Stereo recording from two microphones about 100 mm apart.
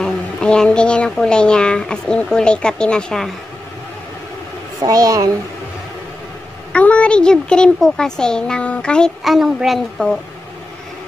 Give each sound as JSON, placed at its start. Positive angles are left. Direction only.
{"t": 0.0, "sound": "a child's voice", "side_deg": 5}
{"t": 4.8, "sound": "a woman's voice", "side_deg": -35}
{"t": 6.7, "sound": "a child's voice", "side_deg": 10}